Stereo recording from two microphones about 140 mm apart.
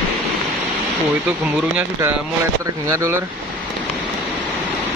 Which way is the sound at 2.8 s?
20° right (ahead or behind).